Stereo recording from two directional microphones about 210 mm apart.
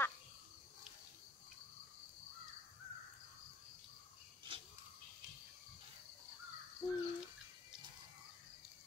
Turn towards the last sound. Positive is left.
turn(degrees=15)  # may be behind; listen again after turning